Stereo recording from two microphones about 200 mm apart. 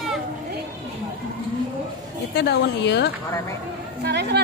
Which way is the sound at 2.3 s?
55° left (ahead or behind).